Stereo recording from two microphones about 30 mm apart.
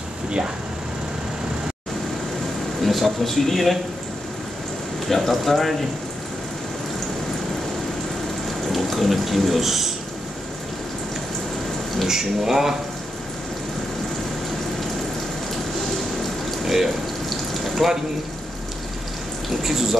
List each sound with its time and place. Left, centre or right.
2.8 s speech: centre
5.0 s speech: centre
8.7 s speech: centre
12.1 s speech: centre
16.6 s water: centre
19.6 s water: centre